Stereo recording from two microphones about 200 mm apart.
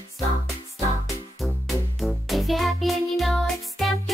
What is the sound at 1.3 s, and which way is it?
Music, centre (ahead or behind).